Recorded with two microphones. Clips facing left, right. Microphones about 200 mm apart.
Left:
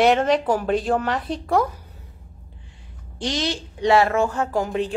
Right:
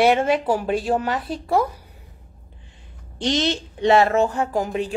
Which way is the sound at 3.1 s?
20° right (ahead or behind).